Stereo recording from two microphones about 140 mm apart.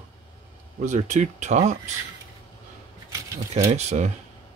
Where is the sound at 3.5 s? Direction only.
55° right (ahead or behind).